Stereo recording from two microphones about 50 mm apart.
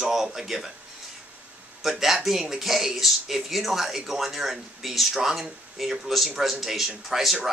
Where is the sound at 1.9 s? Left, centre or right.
Centre.